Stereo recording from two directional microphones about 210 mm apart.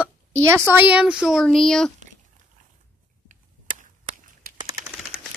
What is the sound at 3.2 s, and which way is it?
Tick, 40° right (ahead or behind).